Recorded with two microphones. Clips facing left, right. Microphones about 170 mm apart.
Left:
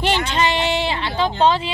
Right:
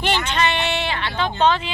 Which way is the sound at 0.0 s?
30° left (ahead or behind).